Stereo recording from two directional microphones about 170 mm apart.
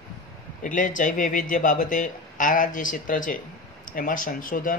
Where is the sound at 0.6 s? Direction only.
50° left (ahead or behind).